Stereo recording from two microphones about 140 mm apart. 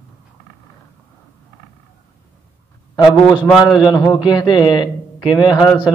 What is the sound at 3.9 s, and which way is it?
A man's voice, 20° left (ahead or behind).